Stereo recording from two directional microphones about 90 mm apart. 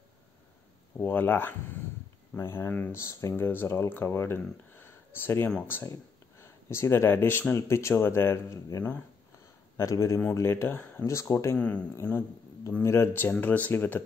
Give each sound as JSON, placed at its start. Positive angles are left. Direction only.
{"t": 0.9, "sound": "speech", "side_deg": 25}
{"t": 8.6, "sound": "speech", "side_deg": 40}
{"t": 11.1, "sound": "speech", "side_deg": 35}
{"t": 11.5, "sound": "speech", "side_deg": 15}
{"t": 12.8, "sound": "speech", "side_deg": 30}